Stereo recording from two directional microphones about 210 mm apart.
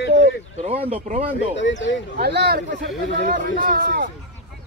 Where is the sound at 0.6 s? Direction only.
25° right (ahead or behind).